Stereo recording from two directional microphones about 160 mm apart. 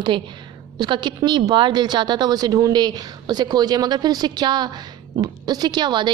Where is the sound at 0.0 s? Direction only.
30° right (ahead or behind).